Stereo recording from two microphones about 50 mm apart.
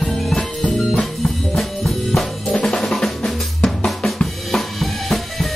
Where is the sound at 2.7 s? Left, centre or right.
Centre.